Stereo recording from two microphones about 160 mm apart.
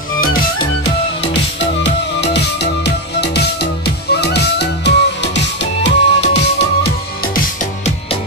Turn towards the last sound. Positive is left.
turn(degrees=90)